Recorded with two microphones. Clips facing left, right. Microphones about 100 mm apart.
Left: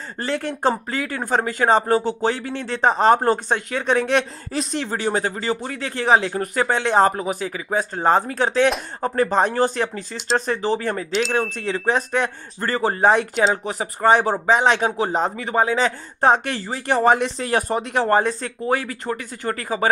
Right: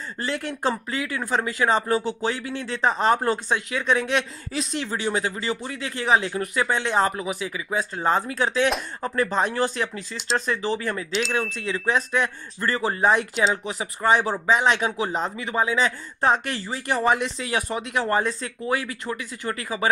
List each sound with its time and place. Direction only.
0.4 s speech: 30° left (ahead or behind)
0.8 s speech: 40° left (ahead or behind)
5.8 s a man's voice: 35° left (ahead or behind)
10.6 s a man's voice: 35° left (ahead or behind)